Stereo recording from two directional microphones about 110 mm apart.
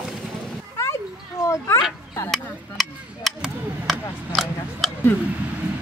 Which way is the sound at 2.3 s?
Centre (ahead or behind).